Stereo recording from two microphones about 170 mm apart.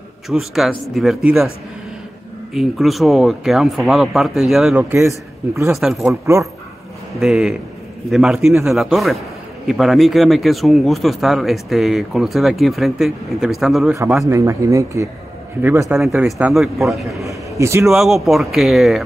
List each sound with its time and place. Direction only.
0.3 s speech: centre (ahead or behind)
2.5 s speech: centre (ahead or behind)
4.9 s a man's voice: 15° right (ahead or behind)
5.7 s speech: centre (ahead or behind)
6.2 s speech: 15° right (ahead or behind)
7.2 s speech: centre (ahead or behind)
14.3 s speech: 15° right (ahead or behind)
16.0 s speech: centre (ahead or behind)
17.2 s a man's voice: 15° right (ahead or behind)
17.8 s speech: centre (ahead or behind)